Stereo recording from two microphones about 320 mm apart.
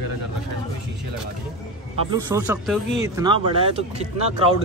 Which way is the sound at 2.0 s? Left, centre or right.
Centre.